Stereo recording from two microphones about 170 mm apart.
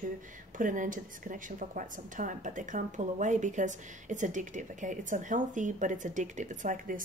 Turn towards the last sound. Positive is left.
turn(degrees=-50)  # may be behind; listen again after turning